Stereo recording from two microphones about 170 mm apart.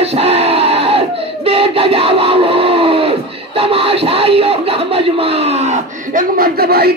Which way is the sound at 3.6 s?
35° right (ahead or behind).